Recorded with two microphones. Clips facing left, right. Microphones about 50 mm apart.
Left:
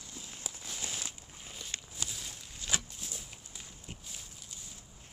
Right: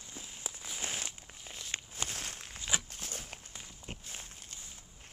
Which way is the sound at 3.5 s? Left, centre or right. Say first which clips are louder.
Right 2 dB; right.